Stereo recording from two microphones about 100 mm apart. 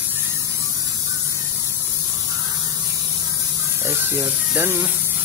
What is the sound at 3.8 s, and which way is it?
Speech, 25° right (ahead or behind).